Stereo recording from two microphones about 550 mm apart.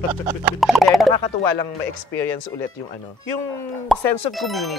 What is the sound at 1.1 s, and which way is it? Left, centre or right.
Speech, left.